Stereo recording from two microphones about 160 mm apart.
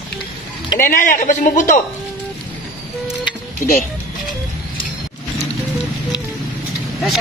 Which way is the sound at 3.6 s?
60° left (ahead or behind).